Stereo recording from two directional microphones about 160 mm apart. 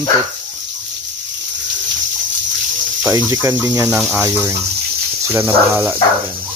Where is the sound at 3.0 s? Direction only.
20° right (ahead or behind).